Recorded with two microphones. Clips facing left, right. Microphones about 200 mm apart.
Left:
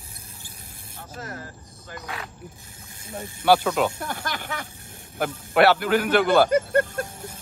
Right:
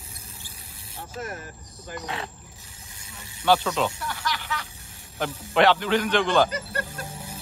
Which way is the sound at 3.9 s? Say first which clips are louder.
Even; 50° left (ahead or behind).